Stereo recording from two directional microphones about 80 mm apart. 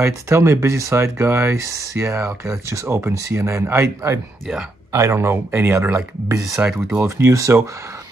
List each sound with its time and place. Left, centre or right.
0.0 s speech: right